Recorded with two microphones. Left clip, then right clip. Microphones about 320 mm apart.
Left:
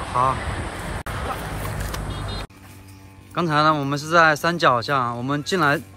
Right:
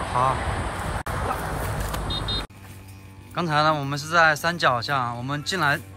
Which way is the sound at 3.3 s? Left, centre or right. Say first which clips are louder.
Left 3 dB; centre.